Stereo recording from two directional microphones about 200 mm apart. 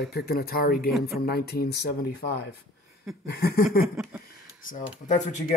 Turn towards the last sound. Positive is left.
turn(degrees=40)  # may be behind; listen again after turning